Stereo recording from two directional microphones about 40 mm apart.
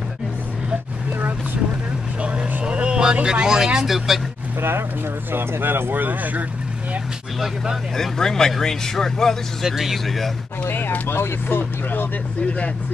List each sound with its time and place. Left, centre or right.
2.2 s vehicle: right; by 4.2 s centre
4.6 s speech: right
5.3 s speech: right
7.9 s speech: centre
9.6 s speech: centre
10.0 s speech: centre
10.6 s speech: left